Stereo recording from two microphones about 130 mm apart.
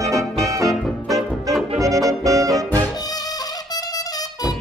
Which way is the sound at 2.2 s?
25° right (ahead or behind).